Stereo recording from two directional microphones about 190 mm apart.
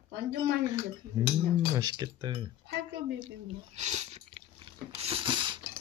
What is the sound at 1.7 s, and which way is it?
Speech, 20° right (ahead or behind).